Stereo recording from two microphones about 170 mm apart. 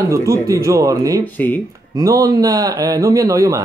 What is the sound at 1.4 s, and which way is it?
Speech, 10° left (ahead or behind).